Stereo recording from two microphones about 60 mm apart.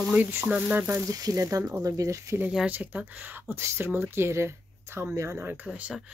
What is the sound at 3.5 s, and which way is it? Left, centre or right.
Speech, right.